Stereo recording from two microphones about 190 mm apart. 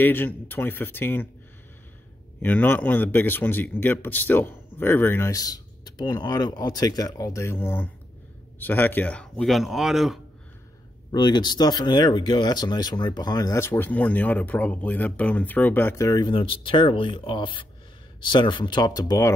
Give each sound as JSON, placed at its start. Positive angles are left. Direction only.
{"t": 0.0, "sound": "speech", "side_deg": 10}
{"t": 2.4, "sound": "speech", "side_deg": 10}
{"t": 11.1, "sound": "speech", "side_deg": 25}